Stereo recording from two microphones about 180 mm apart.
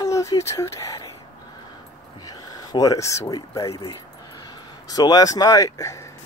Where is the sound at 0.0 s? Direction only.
15° left (ahead or behind).